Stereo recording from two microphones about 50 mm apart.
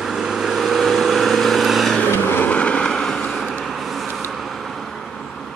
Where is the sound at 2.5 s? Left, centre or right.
Left.